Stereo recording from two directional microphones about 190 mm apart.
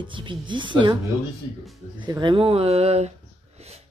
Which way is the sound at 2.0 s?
25° right (ahead or behind).